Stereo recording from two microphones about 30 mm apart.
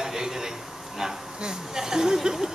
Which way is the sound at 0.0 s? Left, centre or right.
Centre.